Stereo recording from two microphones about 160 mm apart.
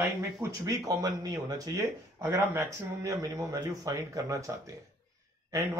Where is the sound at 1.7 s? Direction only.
10° right (ahead or behind).